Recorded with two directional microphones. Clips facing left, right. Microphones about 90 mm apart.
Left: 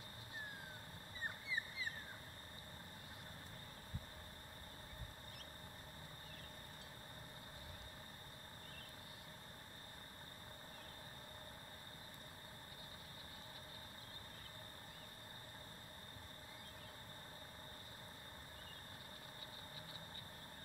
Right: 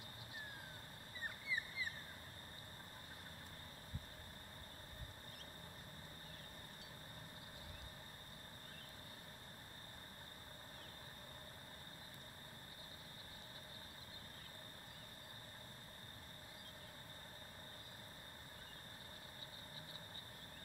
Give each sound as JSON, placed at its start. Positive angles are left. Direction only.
{"t": 1.5, "sound": "vehicle", "side_deg": 25}